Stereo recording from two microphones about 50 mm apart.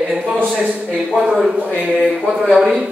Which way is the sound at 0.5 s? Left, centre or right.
Right.